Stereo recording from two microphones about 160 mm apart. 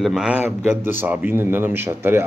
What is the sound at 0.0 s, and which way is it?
A man's voice, 5° right (ahead or behind).